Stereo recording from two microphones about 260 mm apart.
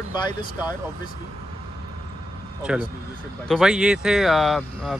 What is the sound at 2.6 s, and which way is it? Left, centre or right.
Speech, centre.